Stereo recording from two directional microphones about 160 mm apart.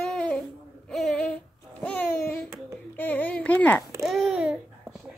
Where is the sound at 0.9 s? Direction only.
5° left (ahead or behind).